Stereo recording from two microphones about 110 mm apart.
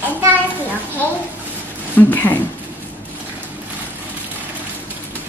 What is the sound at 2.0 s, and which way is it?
Speech, 15° left (ahead or behind).